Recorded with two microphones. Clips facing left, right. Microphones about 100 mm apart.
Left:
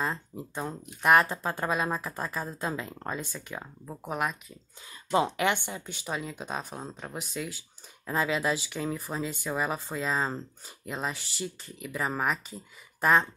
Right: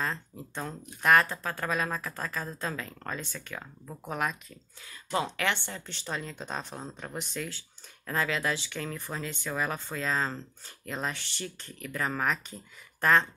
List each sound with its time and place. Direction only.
0.0 s speech: 15° left (ahead or behind)
5.1 s speech: 20° left (ahead or behind)